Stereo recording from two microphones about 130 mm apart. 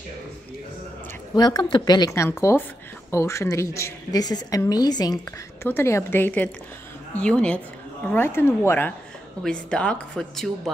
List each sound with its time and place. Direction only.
1.3 s a woman's voice: 30° left (ahead or behind)
5.6 s a woman's voice: 15° left (ahead or behind); by 10.7 s centre (ahead or behind)